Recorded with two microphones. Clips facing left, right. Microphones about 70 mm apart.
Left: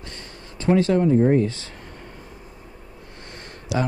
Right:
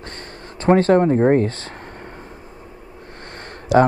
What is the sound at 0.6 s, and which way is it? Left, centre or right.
Speech, right.